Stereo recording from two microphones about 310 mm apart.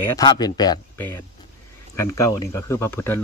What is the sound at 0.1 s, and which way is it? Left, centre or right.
Speech, centre.